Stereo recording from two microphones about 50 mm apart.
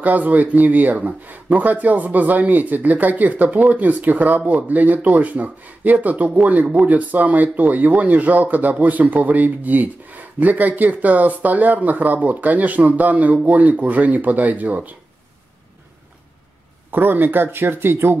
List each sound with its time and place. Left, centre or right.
0.0 s speech: right
16.9 s speech: right